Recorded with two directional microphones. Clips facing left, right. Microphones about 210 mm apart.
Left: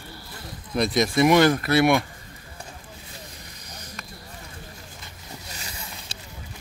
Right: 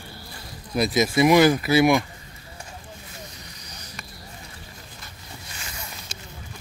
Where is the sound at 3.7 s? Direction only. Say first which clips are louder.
Left 5 dB; 55° left (ahead or behind).